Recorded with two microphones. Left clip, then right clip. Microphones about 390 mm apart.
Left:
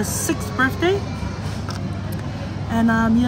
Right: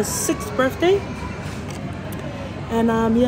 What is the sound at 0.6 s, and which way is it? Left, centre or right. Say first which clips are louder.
Speech: right 1 dB; right.